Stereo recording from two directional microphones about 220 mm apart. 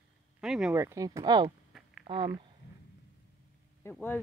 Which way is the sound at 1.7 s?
Centre (ahead or behind).